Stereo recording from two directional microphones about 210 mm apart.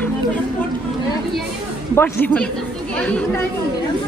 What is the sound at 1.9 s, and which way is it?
Speech, 10° left (ahead or behind).